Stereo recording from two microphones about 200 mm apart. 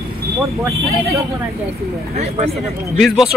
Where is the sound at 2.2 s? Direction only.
35° right (ahead or behind).